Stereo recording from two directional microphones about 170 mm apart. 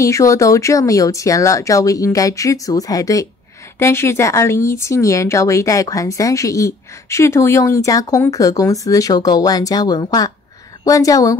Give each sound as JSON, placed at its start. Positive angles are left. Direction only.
{"t": 0.0, "sound": "speech", "side_deg": 20}